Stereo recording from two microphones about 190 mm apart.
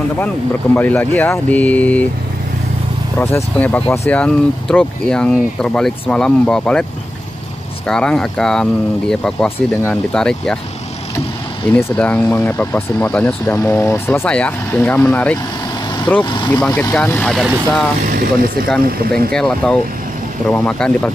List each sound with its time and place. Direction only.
0.7 s speech: 10° left (ahead or behind)
3.2 s speech: 10° left (ahead or behind)
11.7 s speech: 10° left (ahead or behind)
16.3 s speech: 25° left (ahead or behind); by 17.8 s centre (ahead or behind)
18.0 s speech: 50° right (ahead or behind)
19.3 s speech: 5° left (ahead or behind)